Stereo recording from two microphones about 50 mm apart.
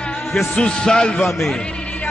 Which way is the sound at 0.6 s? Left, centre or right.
Centre.